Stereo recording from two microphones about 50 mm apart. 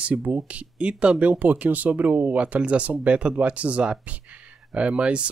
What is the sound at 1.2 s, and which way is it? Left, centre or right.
Speech, right.